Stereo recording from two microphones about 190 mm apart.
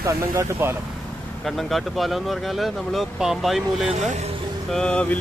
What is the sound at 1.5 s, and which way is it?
Speech, centre (ahead or behind).